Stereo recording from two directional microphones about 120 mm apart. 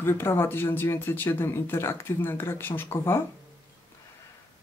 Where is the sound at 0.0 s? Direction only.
20° left (ahead or behind).